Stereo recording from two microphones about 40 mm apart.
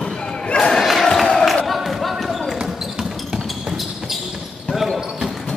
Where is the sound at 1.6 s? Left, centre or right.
Centre.